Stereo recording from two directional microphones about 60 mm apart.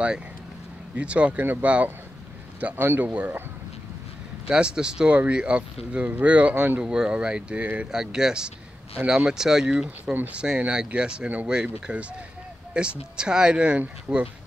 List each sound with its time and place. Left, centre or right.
0.9 s speech: centre
4.5 s speech: centre
6.8 s speech: centre
7.9 s speech: centre